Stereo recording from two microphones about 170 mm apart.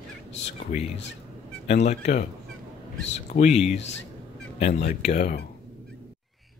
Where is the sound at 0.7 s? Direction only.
45° left (ahead or behind).